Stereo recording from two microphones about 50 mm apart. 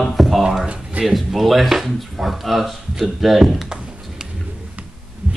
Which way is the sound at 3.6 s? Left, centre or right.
Centre.